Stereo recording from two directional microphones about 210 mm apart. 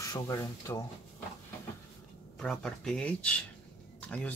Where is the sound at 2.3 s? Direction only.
Centre (ahead or behind).